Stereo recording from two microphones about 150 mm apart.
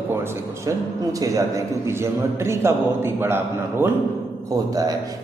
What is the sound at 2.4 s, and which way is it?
A man's voice, 15° right (ahead or behind).